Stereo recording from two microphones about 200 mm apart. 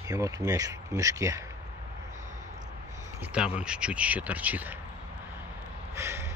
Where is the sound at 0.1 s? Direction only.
15° right (ahead or behind).